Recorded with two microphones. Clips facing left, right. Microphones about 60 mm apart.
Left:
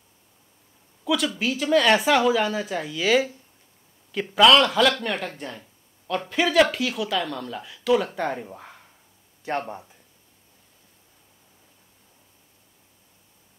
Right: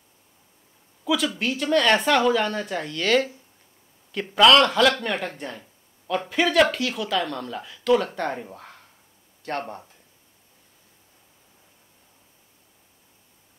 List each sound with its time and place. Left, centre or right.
1.0 s speech: centre
8.5 s a sound: centre
9.4 s speech: centre